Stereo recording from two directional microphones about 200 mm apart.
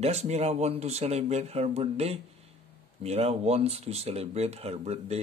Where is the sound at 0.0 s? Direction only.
30° right (ahead or behind).